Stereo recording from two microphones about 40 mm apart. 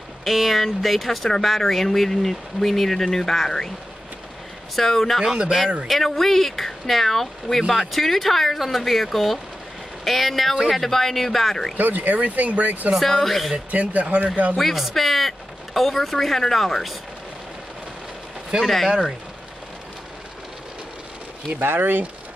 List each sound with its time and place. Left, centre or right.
0.2 s speech: centre
4.7 s speech: centre
5.2 s speech: right
5.9 s speech: centre
11.7 s speech: right
12.9 s speech: centre
13.7 s speech: right
14.6 s speech: centre
18.9 s speech: centre
21.5 s speech: right